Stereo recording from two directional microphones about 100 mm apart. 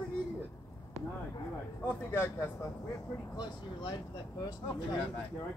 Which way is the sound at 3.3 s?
50° left (ahead or behind).